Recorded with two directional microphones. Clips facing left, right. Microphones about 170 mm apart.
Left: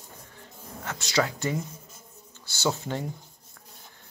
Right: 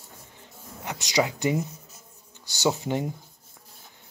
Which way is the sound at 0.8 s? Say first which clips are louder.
Right 2 dB; 15° right (ahead or behind).